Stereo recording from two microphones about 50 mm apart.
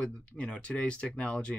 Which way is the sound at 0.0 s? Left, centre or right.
Centre.